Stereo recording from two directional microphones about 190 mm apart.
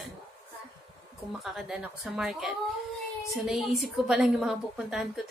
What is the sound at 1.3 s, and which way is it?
A woman's voice, centre (ahead or behind).